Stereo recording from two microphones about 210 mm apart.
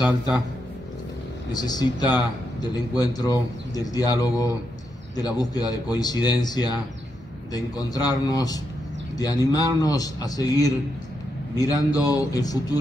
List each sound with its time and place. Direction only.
1.5 s a man's voice: 20° left (ahead or behind)